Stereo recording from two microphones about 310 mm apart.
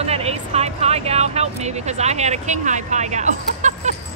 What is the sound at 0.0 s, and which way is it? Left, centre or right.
Speech, centre.